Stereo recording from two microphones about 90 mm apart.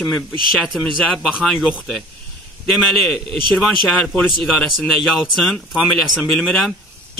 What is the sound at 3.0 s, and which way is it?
Speech, 5° left (ahead or behind).